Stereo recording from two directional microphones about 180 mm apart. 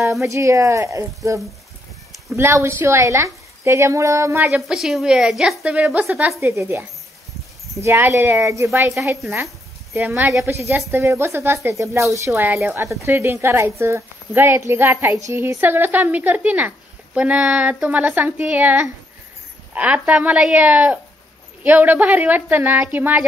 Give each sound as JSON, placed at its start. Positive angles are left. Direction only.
{"t": 0.2, "sound": "a woman's voice", "side_deg": -15}
{"t": 4.6, "sound": "a woman's voice", "side_deg": 0}